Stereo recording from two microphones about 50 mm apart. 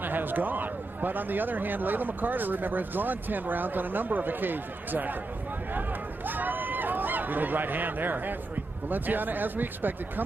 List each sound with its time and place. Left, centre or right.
0.0 s speech: right
5.8 s a sound: right
8.8 s speech: right